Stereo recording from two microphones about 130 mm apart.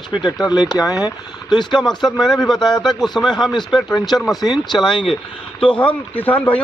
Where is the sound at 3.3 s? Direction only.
35° left (ahead or behind).